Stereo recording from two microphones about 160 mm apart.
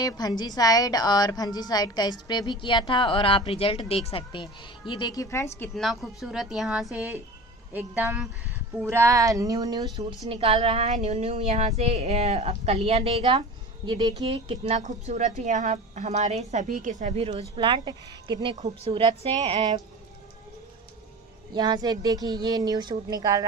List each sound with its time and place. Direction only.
0.0 s a woman's voice: 25° left (ahead or behind)
5.8 s speech: centre (ahead or behind); by 9.8 s 20° right (ahead or behind)
9.9 s a woman's voice: 35° right (ahead or behind)
21.5 s speech: 25° right (ahead or behind)